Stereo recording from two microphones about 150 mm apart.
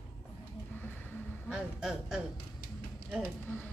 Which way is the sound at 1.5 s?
5° right (ahead or behind).